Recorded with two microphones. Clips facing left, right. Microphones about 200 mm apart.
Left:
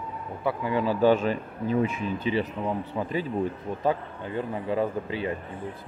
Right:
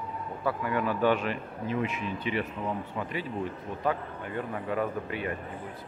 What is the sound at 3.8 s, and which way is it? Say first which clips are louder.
Speech: left 3 dB; 25° left (ahead or behind).